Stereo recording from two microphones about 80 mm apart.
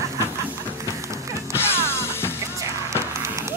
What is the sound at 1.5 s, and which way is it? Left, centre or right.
Music, left.